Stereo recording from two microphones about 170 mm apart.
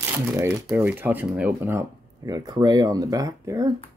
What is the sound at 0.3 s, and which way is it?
Speech, 15° right (ahead or behind).